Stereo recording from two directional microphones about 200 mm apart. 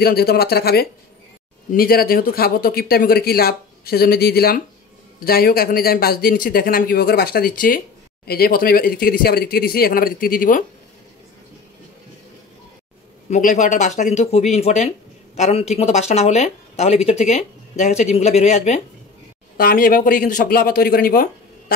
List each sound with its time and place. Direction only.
0.0 s speech: 50° left (ahead or behind)
13.3 s speech: 40° left (ahead or behind)
19.5 s speech: 45° left (ahead or behind)